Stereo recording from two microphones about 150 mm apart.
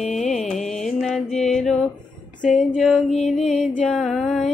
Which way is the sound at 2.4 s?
60° left (ahead or behind).